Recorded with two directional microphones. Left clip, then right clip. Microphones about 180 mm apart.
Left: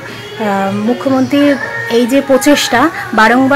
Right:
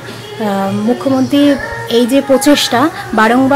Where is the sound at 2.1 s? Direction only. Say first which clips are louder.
Left 1 dB; centre (ahead or behind).